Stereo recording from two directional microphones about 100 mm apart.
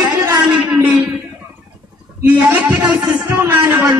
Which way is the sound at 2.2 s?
15° right (ahead or behind).